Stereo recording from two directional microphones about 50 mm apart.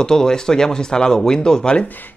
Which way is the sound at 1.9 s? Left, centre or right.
Left.